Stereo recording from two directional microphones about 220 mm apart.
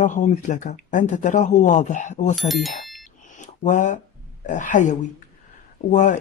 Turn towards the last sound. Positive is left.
turn(degrees=35)  # may be behind; listen again after turning